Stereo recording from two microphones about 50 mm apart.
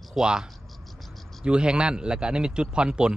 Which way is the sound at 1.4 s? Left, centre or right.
Centre.